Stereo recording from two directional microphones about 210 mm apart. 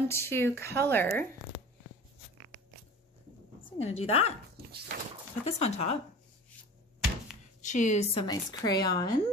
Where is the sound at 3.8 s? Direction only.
30° left (ahead or behind).